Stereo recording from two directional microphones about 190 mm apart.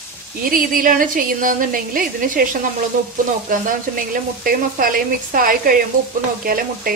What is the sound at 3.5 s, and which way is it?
A woman's voice, 45° right (ahead or behind).